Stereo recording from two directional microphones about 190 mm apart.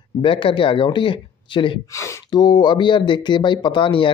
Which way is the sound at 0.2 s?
30° left (ahead or behind).